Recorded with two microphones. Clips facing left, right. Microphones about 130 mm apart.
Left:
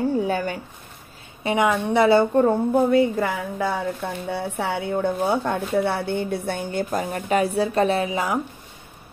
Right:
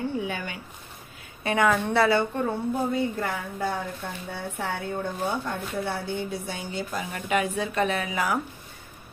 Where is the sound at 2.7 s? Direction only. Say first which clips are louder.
Left 8 dB; 90° left; by 8.4 s 25° left (ahead or behind).